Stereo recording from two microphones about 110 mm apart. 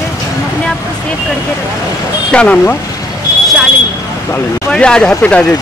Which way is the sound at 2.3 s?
15° left (ahead or behind).